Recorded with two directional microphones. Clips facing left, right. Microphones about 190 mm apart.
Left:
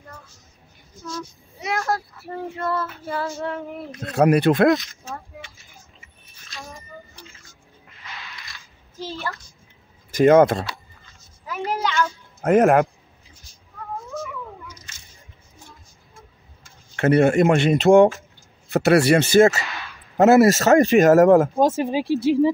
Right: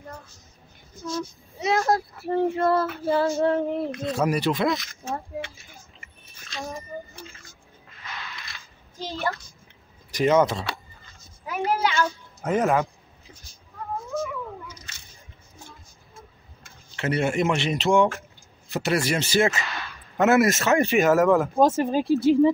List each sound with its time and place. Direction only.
1.1 s speech: 25° right (ahead or behind)
4.1 s speech: 65° left (ahead or behind)
10.1 s speech: 55° left (ahead or behind)
11.5 s a sound: 15° right (ahead or behind)
12.4 s speech: 60° left (ahead or behind)
16.9 s speech: 55° left (ahead or behind); by 21.5 s 40° left (ahead or behind)
21.6 s speech: centre (ahead or behind)